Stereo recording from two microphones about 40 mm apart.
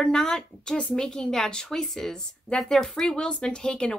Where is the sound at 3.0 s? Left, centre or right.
Centre.